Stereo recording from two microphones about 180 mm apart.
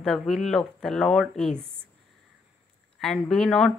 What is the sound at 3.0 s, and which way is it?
Speech, centre (ahead or behind).